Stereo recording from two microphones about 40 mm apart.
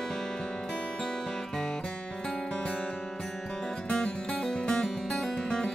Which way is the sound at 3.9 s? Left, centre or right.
Centre.